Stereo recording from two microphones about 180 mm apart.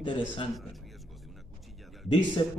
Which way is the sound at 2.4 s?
30° left (ahead or behind).